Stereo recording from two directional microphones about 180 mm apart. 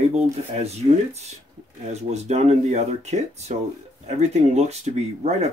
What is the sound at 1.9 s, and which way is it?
Speech, 40° right (ahead or behind).